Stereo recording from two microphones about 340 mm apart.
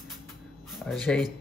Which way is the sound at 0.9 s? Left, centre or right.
Centre.